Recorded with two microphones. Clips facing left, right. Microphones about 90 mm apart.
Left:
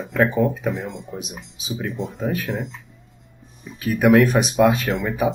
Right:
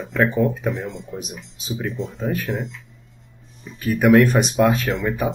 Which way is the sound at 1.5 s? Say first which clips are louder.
Right 1 dB; centre (ahead or behind).